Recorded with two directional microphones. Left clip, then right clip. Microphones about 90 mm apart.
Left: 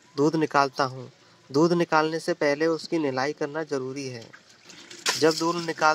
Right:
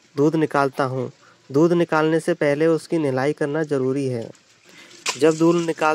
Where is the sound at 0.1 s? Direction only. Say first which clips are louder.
Right 4 dB; 15° right (ahead or behind).